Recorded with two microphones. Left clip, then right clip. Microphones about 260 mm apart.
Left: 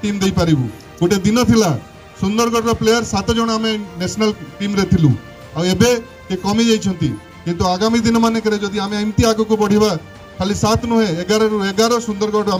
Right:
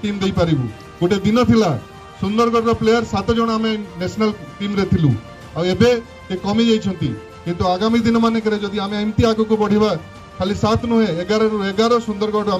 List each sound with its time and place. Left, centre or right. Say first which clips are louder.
0.0 s a man's voice: left 1 dB; left